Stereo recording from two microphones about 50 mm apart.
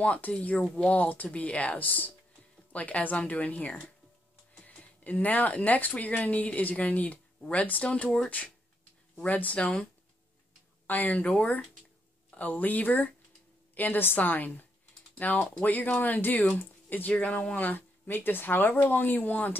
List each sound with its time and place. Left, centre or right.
0.0 s speech: left
9.2 s speech: left
10.9 s speech: left
17.1 s speech: centre
17.6 s speech: left